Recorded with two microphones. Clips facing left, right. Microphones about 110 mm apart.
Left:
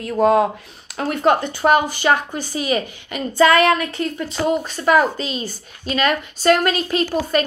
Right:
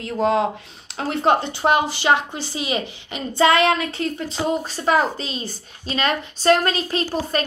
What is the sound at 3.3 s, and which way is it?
A woman's voice, 25° right (ahead or behind).